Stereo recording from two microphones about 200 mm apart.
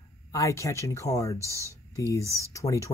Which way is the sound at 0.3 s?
15° left (ahead or behind).